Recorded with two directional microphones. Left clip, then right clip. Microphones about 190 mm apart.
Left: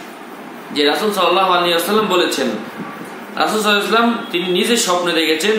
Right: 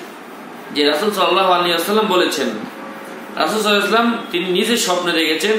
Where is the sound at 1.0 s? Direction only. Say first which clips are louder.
Left 1 dB; 5° left (ahead or behind).